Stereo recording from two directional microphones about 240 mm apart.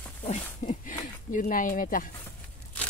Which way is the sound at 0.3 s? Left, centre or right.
Left.